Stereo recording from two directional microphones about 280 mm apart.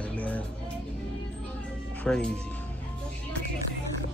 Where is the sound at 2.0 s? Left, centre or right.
Centre.